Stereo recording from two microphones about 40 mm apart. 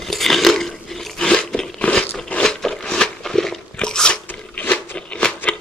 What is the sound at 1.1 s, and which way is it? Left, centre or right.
Crunch, centre.